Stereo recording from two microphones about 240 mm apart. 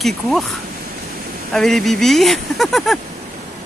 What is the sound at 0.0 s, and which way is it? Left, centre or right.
Speech, centre.